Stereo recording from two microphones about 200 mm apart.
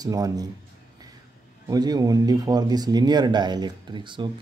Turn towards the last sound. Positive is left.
turn(degrees=-25)  # may be behind; listen again after turning